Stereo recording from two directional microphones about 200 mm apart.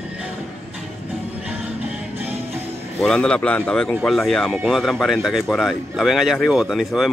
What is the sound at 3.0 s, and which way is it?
Speech, 5° left (ahead or behind).